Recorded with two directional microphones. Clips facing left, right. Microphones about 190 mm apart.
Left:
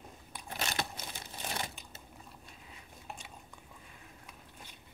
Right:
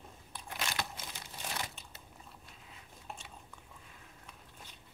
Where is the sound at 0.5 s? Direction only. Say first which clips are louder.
Left 2 dB; 25° left (ahead or behind).